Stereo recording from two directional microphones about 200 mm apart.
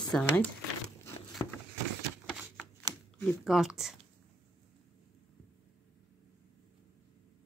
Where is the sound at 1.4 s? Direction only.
15° left (ahead or behind).